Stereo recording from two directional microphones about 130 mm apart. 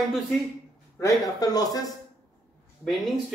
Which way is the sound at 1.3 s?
30° left (ahead or behind).